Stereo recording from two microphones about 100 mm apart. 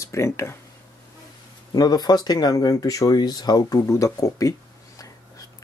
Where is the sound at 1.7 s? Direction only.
40° left (ahead or behind).